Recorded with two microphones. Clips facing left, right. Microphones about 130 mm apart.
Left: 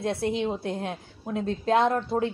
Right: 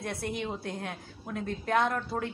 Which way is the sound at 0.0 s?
25° left (ahead or behind).